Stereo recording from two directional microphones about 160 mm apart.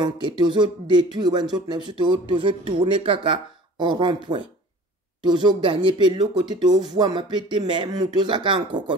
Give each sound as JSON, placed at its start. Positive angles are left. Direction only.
{"t": 0.0, "sound": "speech", "side_deg": -25}